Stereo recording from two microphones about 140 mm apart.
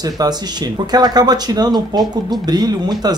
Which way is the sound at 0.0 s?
30° right (ahead or behind).